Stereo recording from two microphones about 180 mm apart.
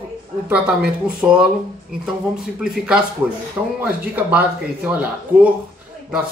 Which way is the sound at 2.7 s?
5° right (ahead or behind).